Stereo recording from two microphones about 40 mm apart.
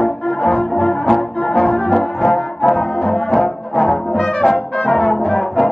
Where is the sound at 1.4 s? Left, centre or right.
Left.